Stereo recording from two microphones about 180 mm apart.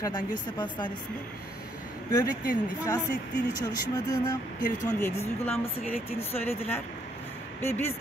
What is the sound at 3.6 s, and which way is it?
A woman's voice, 20° left (ahead or behind).